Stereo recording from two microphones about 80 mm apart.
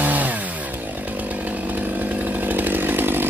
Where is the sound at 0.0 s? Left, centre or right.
Centre.